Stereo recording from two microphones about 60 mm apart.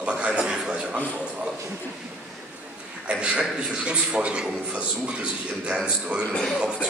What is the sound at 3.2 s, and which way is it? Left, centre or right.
A man's voice, centre.